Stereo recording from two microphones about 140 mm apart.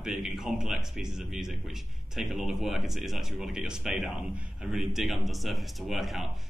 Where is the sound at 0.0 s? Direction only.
Centre (ahead or behind).